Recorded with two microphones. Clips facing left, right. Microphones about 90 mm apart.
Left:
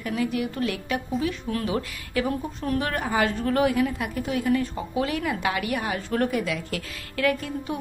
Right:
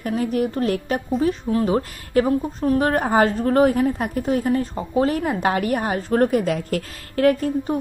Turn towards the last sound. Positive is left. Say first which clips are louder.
# right 7 dB
turn(degrees=-40)  # may be behind; listen again after turning